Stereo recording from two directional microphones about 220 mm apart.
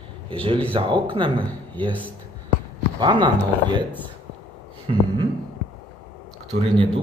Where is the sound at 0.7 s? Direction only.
20° right (ahead or behind).